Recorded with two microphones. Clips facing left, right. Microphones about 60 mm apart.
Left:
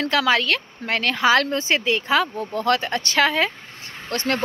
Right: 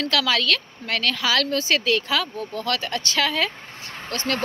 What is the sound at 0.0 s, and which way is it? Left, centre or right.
A woman's voice, left.